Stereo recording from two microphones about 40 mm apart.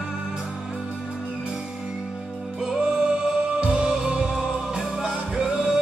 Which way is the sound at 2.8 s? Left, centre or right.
Right.